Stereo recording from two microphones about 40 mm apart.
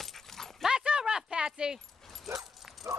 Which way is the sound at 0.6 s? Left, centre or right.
Right.